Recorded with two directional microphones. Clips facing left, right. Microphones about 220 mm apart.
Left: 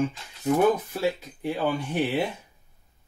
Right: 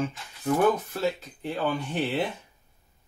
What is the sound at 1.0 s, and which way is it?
Speech, 10° left (ahead or behind).